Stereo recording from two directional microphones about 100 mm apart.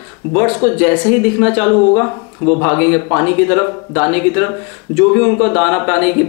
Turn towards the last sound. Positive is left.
turn(degrees=10)  # may be behind; listen again after turning